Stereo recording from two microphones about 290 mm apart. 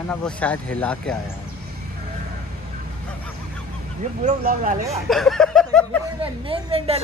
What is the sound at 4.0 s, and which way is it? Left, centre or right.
Speech, right.